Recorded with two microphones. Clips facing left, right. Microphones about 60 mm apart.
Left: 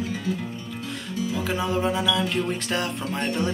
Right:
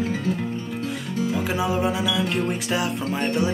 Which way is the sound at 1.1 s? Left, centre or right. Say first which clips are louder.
Right 3 dB; right.